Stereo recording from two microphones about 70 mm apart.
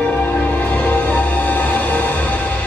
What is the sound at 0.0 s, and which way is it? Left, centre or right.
Music, left.